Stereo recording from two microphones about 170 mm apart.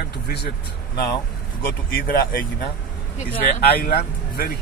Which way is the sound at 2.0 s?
55° left (ahead or behind).